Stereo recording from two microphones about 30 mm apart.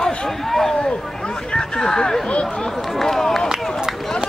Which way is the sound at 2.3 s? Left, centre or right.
Left.